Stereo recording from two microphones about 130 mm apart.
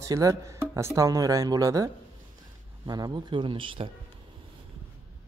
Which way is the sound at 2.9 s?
30° right (ahead or behind).